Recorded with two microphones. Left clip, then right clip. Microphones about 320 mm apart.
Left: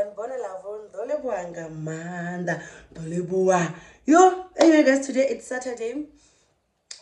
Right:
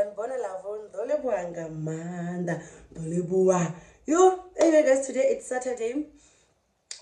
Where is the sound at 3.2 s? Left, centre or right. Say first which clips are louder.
Left 2 dB; left.